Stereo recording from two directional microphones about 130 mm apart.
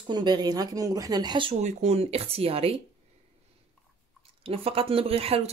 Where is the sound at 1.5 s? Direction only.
60° right (ahead or behind).